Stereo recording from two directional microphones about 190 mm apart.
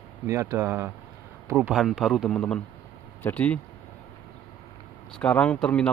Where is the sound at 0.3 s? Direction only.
15° right (ahead or behind); by 3.5 s 10° left (ahead or behind).